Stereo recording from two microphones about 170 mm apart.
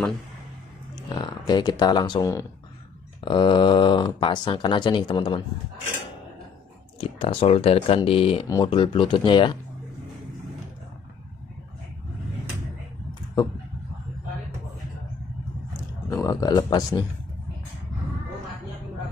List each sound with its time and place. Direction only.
1.0 s speech: 25° left (ahead or behind)
7.0 s speech: 30° left (ahead or behind)
16.1 s speech: 20° left (ahead or behind)